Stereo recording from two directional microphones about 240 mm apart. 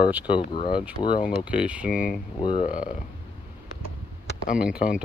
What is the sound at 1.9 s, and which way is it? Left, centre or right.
Speech, left.